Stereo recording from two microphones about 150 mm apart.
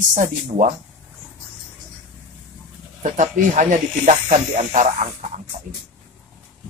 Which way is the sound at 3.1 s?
55° right (ahead or behind).